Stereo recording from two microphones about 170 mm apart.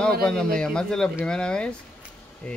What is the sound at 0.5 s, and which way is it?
Speech, 5° left (ahead or behind).